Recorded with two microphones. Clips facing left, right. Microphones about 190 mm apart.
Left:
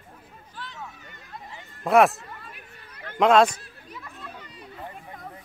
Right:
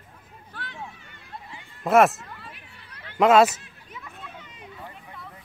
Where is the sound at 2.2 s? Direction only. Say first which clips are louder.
Even; 45° left (ahead or behind).